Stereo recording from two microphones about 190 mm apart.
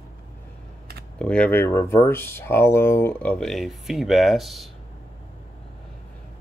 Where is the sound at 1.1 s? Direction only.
5° left (ahead or behind).